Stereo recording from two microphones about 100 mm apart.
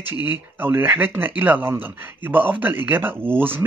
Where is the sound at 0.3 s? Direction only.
20° right (ahead or behind).